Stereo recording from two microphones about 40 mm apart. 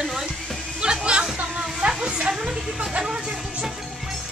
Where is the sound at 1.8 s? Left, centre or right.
Right.